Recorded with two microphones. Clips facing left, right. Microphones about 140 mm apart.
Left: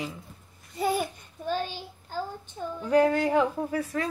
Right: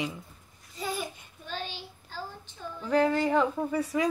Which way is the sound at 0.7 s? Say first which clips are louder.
Left 7 dB; 55° left (ahead or behind).